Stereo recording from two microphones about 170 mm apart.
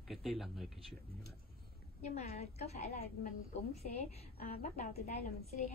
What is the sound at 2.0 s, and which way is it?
A woman's voice, 40° left (ahead or behind).